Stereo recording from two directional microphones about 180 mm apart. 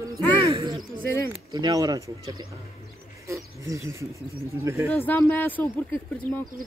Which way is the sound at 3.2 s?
15° right (ahead or behind).